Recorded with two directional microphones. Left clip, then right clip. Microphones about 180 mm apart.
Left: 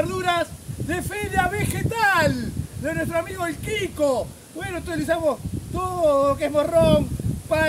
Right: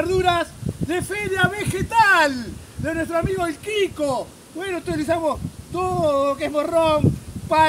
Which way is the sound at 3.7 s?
15° left (ahead or behind).